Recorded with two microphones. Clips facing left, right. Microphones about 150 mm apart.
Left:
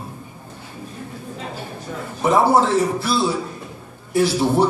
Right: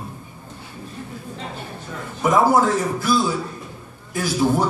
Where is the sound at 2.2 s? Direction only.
30° left (ahead or behind).